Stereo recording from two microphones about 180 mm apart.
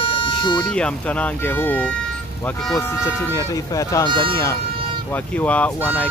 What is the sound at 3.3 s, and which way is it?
Speech, 20° left (ahead or behind).